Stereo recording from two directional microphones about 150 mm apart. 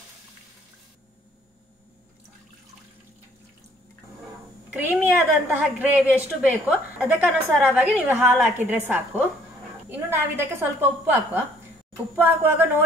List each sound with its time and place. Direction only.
4.6 s a woman's voice: 10° right (ahead or behind)
12.2 s a woman's voice: 15° right (ahead or behind)